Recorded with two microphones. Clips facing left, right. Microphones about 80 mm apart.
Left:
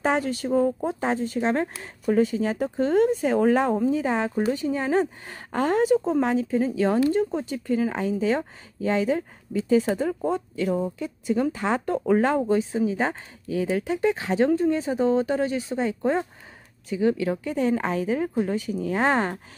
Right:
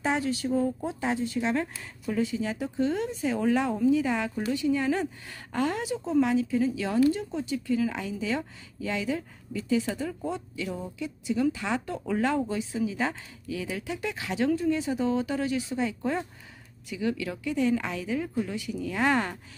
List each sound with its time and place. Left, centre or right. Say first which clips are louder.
0.0 s speech: left 4 dB; left